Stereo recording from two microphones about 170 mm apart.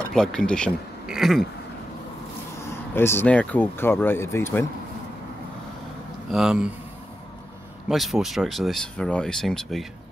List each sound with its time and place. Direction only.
0.1 s speech: 5° left (ahead or behind)
2.9 s speech: 15° left (ahead or behind)
6.3 s speech: 5° right (ahead or behind)
7.9 s speech: centre (ahead or behind)